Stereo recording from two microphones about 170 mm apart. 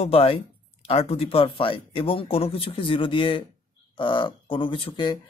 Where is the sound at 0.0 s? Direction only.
35° left (ahead or behind).